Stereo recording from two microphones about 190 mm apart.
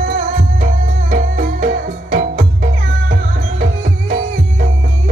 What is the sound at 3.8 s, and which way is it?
Music, 45° right (ahead or behind).